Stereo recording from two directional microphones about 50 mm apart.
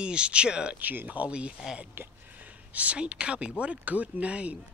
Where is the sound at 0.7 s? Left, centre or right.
Right.